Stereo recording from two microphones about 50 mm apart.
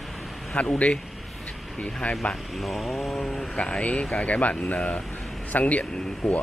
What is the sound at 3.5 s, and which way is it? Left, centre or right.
Speech, left.